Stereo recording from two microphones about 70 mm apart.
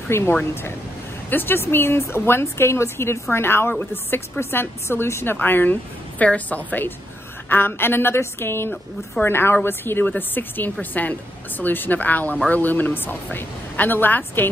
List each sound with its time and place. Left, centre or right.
0.3 s a woman's voice: left